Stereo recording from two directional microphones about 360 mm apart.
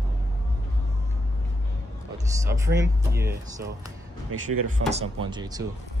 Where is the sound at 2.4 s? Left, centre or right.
Centre.